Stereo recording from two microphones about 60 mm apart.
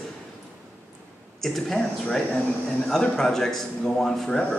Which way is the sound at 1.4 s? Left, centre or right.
Centre.